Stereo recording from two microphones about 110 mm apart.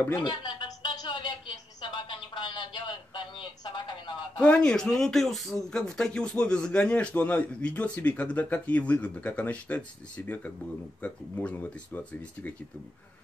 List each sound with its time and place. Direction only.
0.2 s a sound: 45° left (ahead or behind)
1.8 s speech: 45° left (ahead or behind)
4.4 s speech: 10° left (ahead or behind)